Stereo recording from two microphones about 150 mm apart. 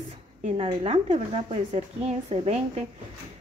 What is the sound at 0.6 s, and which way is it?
A woman's voice, 35° right (ahead or behind).